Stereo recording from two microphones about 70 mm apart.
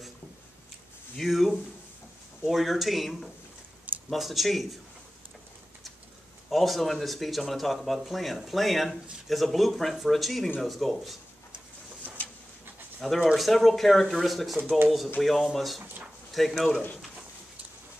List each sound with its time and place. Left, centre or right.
1.1 s speech: centre
6.5 s speech: centre
13.0 s speech: centre
14.6 s speech: right
15.1 s speech: centre